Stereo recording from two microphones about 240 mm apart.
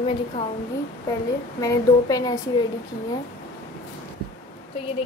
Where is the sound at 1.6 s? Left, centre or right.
Centre.